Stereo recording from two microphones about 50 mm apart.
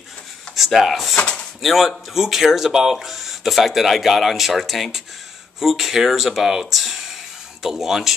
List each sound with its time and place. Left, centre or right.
0.6 s speech: centre
1.1 s speech: centre
1.6 s speech: centre